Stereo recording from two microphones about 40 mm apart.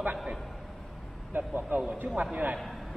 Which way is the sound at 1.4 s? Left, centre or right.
Right.